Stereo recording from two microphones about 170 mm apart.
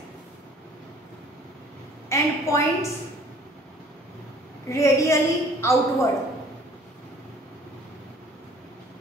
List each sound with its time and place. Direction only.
2.0 s a woman's voice: 15° left (ahead or behind)
4.6 s a woman's voice: 15° left (ahead or behind)